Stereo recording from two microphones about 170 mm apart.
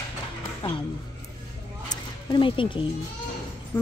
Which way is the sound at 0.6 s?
30° left (ahead or behind).